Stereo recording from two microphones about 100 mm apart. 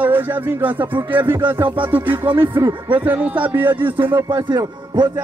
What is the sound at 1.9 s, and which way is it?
Music, 20° right (ahead or behind).